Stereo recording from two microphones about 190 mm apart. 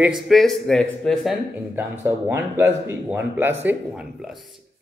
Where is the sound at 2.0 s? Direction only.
15° right (ahead or behind).